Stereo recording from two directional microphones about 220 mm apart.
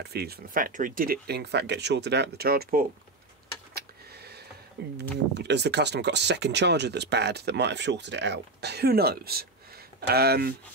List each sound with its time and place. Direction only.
0.0 s speech: 45° right (ahead or behind)
3.7 s a sound: 45° right (ahead or behind)
4.8 s speech: 50° right (ahead or behind)